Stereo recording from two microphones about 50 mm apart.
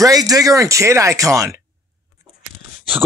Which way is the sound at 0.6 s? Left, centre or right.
Right.